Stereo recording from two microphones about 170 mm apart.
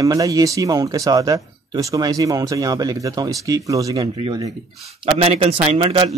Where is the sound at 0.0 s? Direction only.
20° right (ahead or behind).